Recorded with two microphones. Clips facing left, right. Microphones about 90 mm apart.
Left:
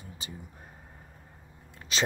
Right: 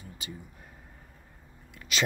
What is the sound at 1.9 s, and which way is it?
Speech, 30° left (ahead or behind).